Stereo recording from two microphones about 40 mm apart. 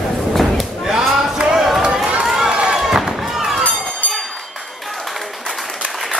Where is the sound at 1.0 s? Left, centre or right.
Centre.